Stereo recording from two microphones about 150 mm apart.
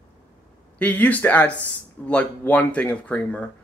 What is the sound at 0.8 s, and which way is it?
Speech, 10° left (ahead or behind).